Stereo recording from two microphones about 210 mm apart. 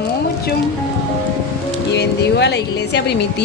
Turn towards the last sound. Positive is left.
turn(degrees=55)  # may be behind; listen again after turning